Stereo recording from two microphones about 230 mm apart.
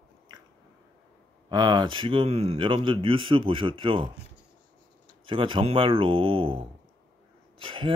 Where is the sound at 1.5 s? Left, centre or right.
Centre.